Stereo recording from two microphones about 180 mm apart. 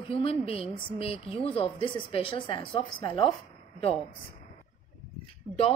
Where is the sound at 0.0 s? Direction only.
30° left (ahead or behind).